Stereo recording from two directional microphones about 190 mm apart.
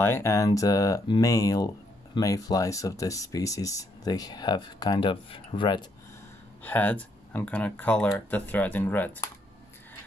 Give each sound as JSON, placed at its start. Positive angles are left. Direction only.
{"t": 0.0, "sound": "speech", "side_deg": 15}
{"t": 6.6, "sound": "speech", "side_deg": 10}